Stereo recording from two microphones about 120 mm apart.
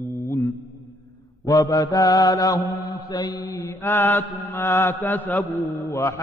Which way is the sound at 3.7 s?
20° left (ahead or behind).